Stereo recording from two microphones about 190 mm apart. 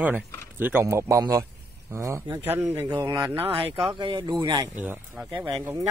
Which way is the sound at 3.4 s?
30° right (ahead or behind).